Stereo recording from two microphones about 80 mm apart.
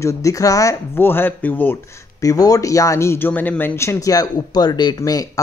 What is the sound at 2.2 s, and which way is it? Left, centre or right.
Speech, left.